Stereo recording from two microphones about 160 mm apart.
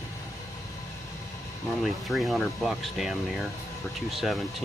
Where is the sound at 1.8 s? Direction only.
Centre (ahead or behind).